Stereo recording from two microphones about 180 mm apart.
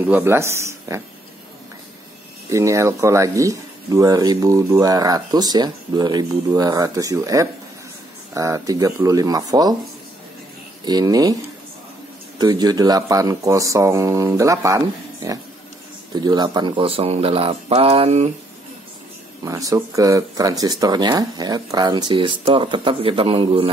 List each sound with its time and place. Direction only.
0.0 s speech: 10° right (ahead or behind)
2.5 s speech: 15° right (ahead or behind)
10.9 s speech: 20° right (ahead or behind)
12.4 s speech: 25° right (ahead or behind)
16.2 s speech: 25° right (ahead or behind)
19.4 s speech: 20° right (ahead or behind)